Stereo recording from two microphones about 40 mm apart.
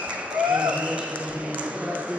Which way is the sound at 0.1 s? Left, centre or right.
Right.